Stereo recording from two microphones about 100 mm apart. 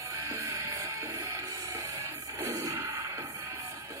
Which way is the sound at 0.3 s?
30° right (ahead or behind).